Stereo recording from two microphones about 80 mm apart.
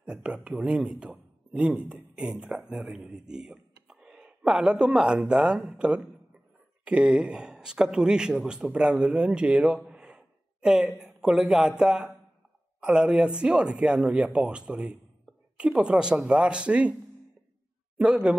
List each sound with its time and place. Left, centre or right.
0.0 s speech: centre
9.8 s gasp: centre
11.0 s speech: centre
17.9 s speech: centre